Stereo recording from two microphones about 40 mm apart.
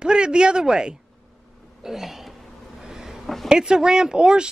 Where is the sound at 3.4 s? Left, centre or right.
Centre.